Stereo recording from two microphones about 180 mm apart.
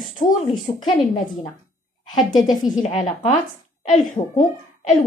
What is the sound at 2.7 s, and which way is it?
Speech, 40° left (ahead or behind).